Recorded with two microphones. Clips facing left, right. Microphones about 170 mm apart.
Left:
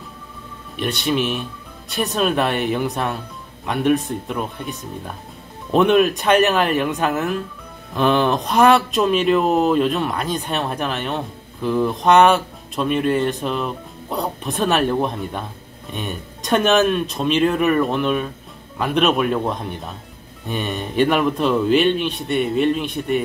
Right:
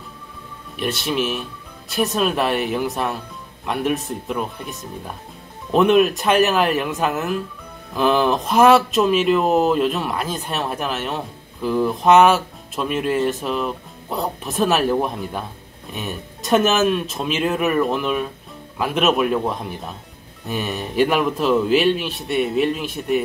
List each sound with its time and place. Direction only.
0.7 s speech: centre (ahead or behind)